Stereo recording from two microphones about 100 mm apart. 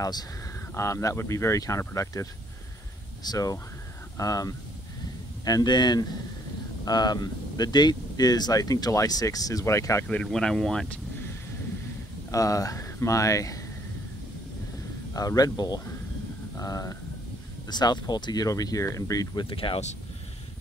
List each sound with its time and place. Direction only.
0.7 s speech: 30° left (ahead or behind)
3.3 s speech: 35° left (ahead or behind)
10.2 s speech: 5° left (ahead or behind)
12.3 s speech: 35° left (ahead or behind)
15.1 s speech: 40° left (ahead or behind)
17.6 s speech: 45° left (ahead or behind)
19.5 s speech: 65° left (ahead or behind)